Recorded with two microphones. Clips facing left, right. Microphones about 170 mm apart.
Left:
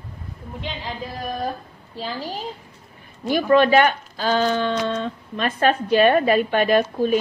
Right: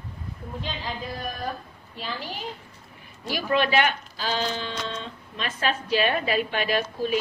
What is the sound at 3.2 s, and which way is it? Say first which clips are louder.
Speech: left 8 dB; 50° left (ahead or behind).